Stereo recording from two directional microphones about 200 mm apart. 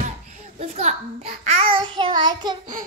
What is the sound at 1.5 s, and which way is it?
Child singing, 25° right (ahead or behind).